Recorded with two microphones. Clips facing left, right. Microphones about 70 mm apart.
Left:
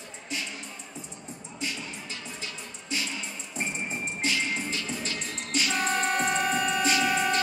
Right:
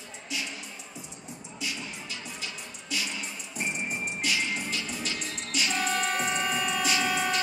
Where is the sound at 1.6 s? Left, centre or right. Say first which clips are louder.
Left 1 dB; left.